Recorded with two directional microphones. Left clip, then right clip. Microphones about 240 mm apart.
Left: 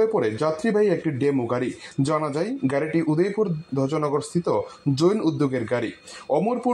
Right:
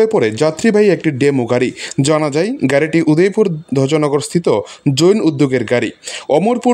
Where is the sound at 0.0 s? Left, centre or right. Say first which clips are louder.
Right 9 dB; right.